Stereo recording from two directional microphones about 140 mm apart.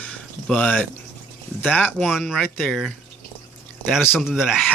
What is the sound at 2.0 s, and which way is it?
Speech, centre (ahead or behind).